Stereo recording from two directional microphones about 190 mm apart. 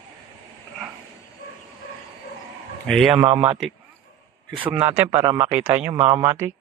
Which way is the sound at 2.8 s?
Centre (ahead or behind).